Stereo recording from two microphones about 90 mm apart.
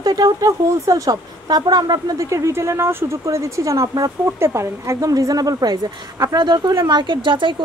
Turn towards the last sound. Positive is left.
turn(degrees=-65)  # may be behind; listen again after turning